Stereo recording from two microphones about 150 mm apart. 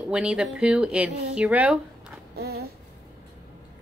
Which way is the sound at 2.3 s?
90° right.